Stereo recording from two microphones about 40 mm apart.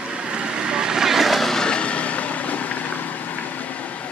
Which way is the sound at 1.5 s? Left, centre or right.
Centre.